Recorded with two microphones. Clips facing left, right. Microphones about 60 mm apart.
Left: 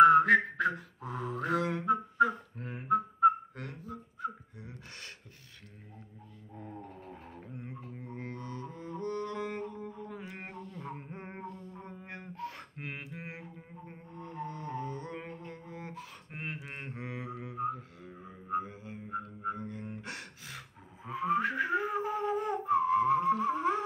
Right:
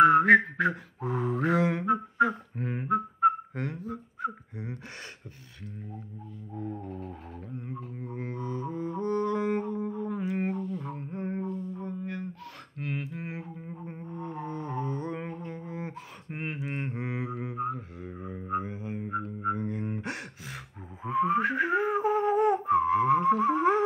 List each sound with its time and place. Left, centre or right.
0.0 s mantra: right
1.8 s a sound: right
3.5 s whistling: right
4.2 s a sound: right
6.7 s music: centre
10.9 s music: centre
11.8 s a sound: left; by 13.5 s centre
13.8 s didgeridoo: centre
18.2 s didgeridoo: right
20.0 s music: right